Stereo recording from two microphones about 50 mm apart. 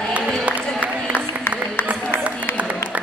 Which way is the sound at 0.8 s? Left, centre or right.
Left.